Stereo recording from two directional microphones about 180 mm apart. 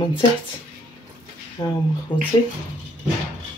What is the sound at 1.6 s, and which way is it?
Speech, 20° left (ahead or behind).